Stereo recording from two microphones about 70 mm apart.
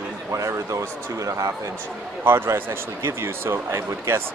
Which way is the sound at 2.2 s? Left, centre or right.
Right.